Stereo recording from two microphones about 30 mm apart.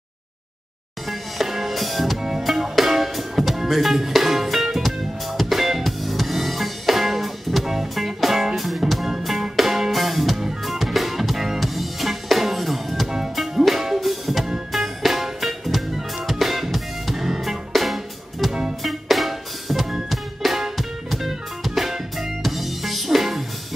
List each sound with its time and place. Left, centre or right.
1.0 s music: centre
18.5 s music: right
18.8 s music: centre